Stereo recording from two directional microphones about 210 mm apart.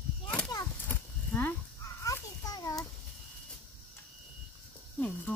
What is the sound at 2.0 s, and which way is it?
Children playing, 15° left (ahead or behind).